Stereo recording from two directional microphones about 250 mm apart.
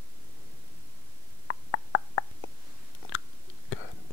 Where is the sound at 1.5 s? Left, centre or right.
Left.